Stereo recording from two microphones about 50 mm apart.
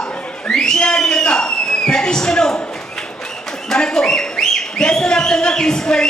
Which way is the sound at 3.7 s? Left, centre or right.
Centre.